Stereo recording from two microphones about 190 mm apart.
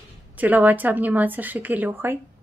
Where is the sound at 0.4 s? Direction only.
10° right (ahead or behind).